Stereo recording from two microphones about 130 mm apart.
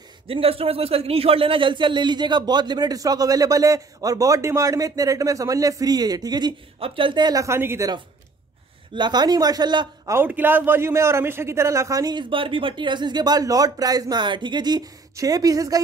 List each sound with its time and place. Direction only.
0.3 s speech: 45° right (ahead or behind); by 7.9 s 20° right (ahead or behind)
8.9 s speech: 35° right (ahead or behind)
10.1 s speech: 15° right (ahead or behind)